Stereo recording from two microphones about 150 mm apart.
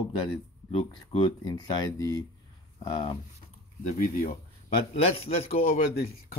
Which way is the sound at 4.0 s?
70° left (ahead or behind).